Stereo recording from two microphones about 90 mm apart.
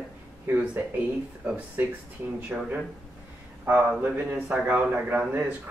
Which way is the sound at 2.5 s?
5° right (ahead or behind).